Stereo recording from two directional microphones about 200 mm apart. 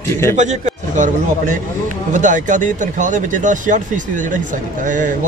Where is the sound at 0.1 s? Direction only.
10° left (ahead or behind).